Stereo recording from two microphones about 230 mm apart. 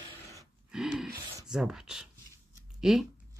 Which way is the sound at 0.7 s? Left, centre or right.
Centre.